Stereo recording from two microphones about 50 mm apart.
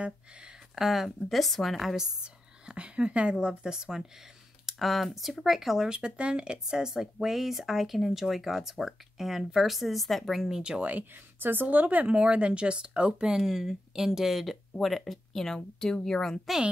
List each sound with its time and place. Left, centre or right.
0.7 s speech: centre
2.2 s speech: centre
4.6 s speech: centre
5.9 s speech: centre
10.5 s speech: centre
10.8 s speech: right; by 16.3 s centre